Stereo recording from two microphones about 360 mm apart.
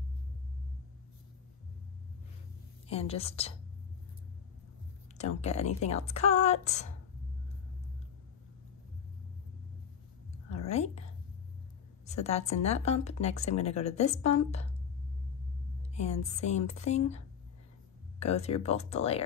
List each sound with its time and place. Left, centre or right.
2.9 s a woman's voice: centre
5.1 s a woman's voice: centre
10.7 s a woman's voice: centre
12.1 s a woman's voice: centre
15.9 s a woman's voice: centre
18.2 s a woman's voice: centre